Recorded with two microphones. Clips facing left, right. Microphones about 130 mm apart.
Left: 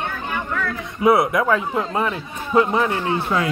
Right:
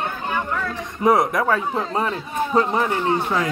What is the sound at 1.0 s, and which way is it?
A man's voice, 40° right (ahead or behind).